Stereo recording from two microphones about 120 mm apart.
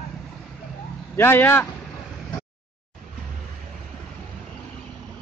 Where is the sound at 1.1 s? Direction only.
20° left (ahead or behind).